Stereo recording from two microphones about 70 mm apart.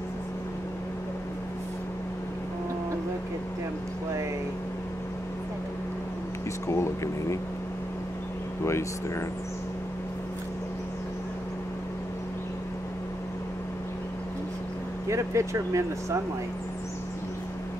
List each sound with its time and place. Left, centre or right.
6.7 s speech: left
15.0 s speech: right